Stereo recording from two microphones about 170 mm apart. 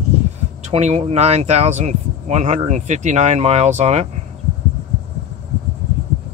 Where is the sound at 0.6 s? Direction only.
40° right (ahead or behind).